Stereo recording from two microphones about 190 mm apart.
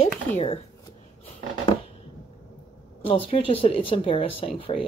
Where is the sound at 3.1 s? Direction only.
30° left (ahead or behind).